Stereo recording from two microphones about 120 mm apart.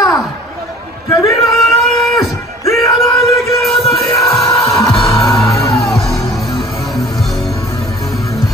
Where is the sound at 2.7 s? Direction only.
25° left (ahead or behind).